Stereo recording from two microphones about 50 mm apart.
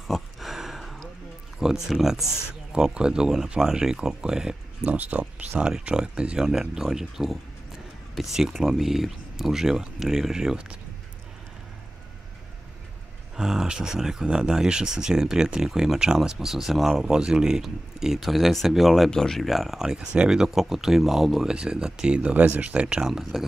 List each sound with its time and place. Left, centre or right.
0.0 s a sound: centre
1.6 s speech: centre
2.7 s speech: centre
4.9 s speech: right
5.6 s speech: centre
13.4 s speech: centre
19.0 s speech: centre; by 23.0 s right
23.0 s speech: centre